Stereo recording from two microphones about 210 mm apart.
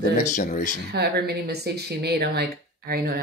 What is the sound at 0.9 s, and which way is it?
Speech, 50° right (ahead or behind).